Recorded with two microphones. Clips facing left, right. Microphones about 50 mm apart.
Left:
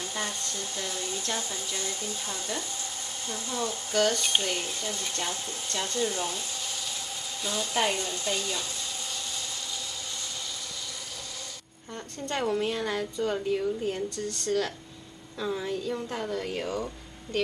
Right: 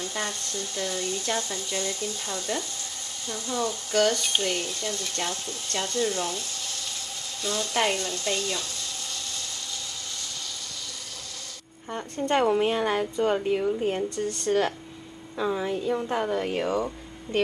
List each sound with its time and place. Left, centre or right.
0.0 s speech: centre
11.9 s a woman's voice: right
16.7 s a sound: right